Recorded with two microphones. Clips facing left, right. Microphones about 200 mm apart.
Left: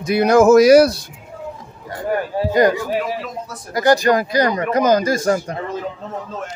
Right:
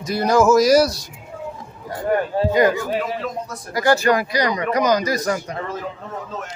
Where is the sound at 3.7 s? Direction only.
15° left (ahead or behind).